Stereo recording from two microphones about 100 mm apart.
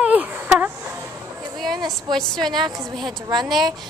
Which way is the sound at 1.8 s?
45° right (ahead or behind).